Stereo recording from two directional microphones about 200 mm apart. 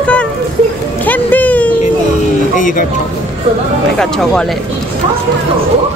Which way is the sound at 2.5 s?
40° left (ahead or behind).